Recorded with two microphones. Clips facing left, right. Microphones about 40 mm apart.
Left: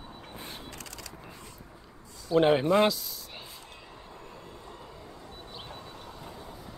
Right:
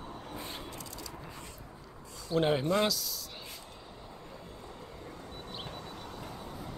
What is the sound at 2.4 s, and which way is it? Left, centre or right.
Speech, left.